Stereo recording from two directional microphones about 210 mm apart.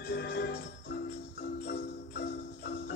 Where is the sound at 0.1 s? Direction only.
50° left (ahead or behind).